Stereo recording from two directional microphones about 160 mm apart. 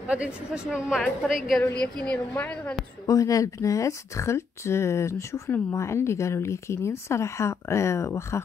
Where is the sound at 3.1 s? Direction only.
20° left (ahead or behind).